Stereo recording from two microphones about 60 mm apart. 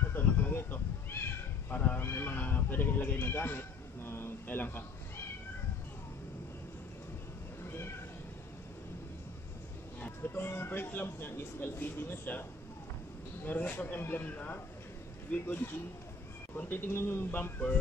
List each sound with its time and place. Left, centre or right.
0.1 s cat: left
1.7 s speech: left
2.0 s speech: left
7.6 s cat: left
10.0 s speech: left
11.8 s speech: left
13.5 s speech: left
17.3 s music: left